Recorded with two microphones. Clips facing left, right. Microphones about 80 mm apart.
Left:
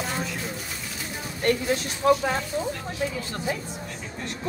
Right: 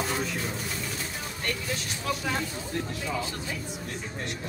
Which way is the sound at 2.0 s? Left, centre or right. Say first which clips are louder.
Left 12 dB; left.